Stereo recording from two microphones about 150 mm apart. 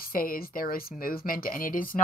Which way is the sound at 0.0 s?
75° left (ahead or behind).